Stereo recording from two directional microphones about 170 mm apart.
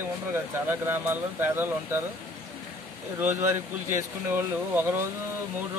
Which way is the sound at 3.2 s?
15° right (ahead or behind).